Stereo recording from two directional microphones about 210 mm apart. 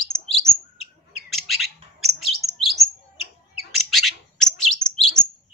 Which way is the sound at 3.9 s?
Centre (ahead or behind).